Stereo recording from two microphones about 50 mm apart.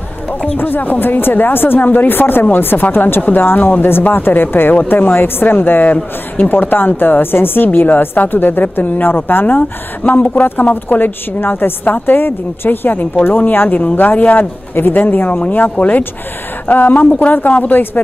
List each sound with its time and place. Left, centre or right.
0.6 s speech: left
3.2 s a woman's voice: left
3.4 s a woman's voice: left
9.6 s a woman's voice: left